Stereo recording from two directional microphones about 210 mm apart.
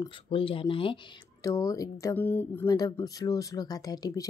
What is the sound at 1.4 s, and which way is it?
Speech, 15° left (ahead or behind).